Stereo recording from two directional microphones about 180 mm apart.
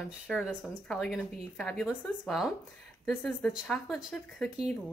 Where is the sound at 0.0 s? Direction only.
Centre (ahead or behind).